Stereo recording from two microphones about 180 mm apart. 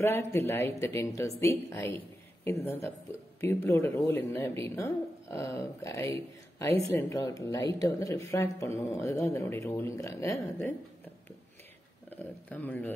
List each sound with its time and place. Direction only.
0.5 s speech: 15° left (ahead or behind)
12.1 s speech: 10° left (ahead or behind)